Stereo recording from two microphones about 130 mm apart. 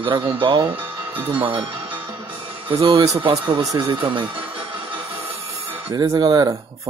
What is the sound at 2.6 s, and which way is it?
Speech, 40° right (ahead or behind).